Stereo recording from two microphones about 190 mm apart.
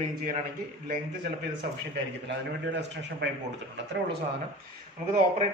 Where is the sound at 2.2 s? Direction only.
65° right (ahead or behind).